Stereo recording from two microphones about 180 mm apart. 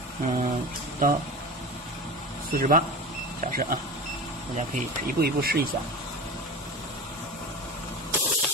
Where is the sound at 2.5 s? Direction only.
50° right (ahead or behind).